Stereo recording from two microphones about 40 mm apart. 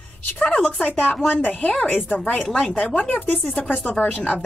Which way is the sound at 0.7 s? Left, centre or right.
Left.